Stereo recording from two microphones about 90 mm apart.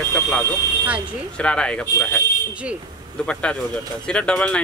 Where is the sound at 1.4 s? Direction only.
10° left (ahead or behind).